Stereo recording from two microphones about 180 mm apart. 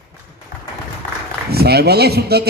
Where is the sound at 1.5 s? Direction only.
60° right (ahead or behind).